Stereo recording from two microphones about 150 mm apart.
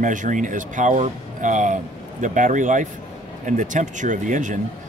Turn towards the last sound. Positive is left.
turn(degrees=-55)  # may be behind; listen again after turning